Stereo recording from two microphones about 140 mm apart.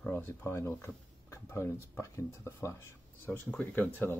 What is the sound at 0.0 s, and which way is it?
Speech, 15° left (ahead or behind).